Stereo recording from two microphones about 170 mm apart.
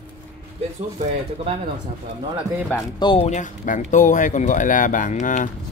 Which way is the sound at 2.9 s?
30° left (ahead or behind).